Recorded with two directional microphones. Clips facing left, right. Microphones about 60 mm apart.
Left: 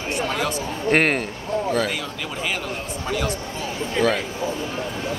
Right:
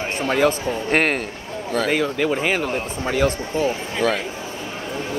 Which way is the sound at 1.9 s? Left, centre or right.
Right.